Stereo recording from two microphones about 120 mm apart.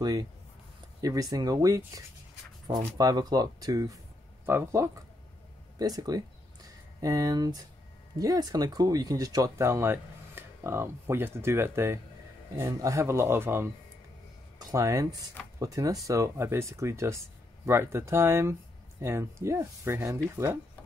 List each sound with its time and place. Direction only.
0.0 s speech: 30° right (ahead or behind)
5.8 s speech: 30° right (ahead or behind)